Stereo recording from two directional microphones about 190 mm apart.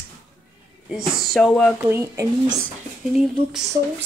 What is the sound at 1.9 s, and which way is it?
Speech, 15° right (ahead or behind).